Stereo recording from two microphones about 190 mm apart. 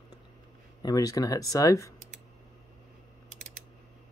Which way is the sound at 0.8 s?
20° left (ahead or behind).